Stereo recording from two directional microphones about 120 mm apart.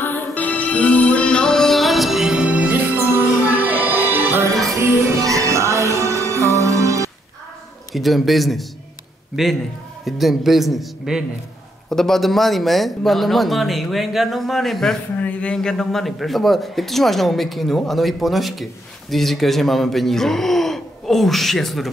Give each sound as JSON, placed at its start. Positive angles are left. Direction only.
{"t": 0.0, "sound": "music", "side_deg": 15}
{"t": 7.9, "sound": "a man's voice", "side_deg": 0}